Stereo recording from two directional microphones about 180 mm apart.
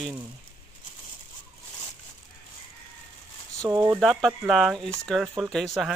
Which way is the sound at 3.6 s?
20° right (ahead or behind).